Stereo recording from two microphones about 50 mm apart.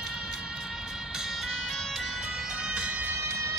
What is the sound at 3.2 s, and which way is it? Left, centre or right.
Music, right.